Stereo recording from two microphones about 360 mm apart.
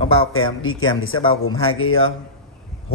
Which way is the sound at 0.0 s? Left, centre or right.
Centre.